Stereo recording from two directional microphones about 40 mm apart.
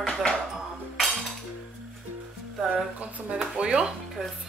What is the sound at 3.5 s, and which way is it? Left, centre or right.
Speech, right.